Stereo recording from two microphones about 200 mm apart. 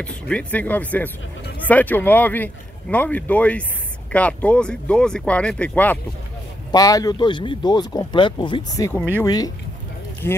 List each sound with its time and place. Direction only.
0.0 s speech: 5° left (ahead or behind)
6.7 s speech: 20° left (ahead or behind)